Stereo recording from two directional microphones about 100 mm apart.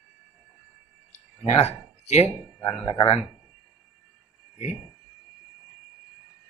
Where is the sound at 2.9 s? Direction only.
60° left (ahead or behind).